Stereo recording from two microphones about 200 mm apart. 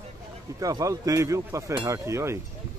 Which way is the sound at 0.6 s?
20° right (ahead or behind).